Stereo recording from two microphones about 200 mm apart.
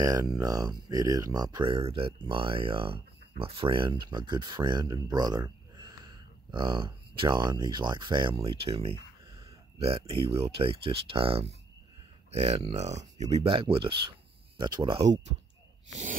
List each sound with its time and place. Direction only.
0.0 s speech: 20° right (ahead or behind)